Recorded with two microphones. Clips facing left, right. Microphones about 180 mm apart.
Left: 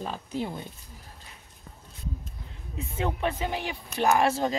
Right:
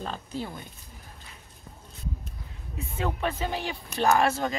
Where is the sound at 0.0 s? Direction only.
10° left (ahead or behind).